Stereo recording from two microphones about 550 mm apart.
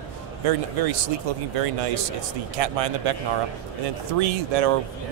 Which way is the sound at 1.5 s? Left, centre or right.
Right.